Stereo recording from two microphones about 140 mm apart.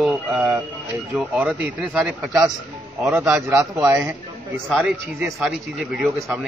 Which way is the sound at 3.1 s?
20° right (ahead or behind).